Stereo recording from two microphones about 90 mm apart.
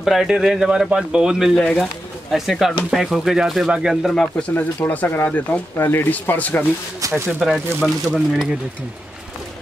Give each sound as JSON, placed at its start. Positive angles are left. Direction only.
{"t": 0.0, "sound": "speech", "side_deg": 0}
{"t": 1.6, "sound": "speech", "side_deg": 5}
{"t": 4.1, "sound": "speech", "side_deg": 5}
{"t": 4.6, "sound": "speech", "side_deg": 20}
{"t": 7.0, "sound": "speech", "side_deg": -30}
{"t": 7.2, "sound": "speech", "side_deg": 0}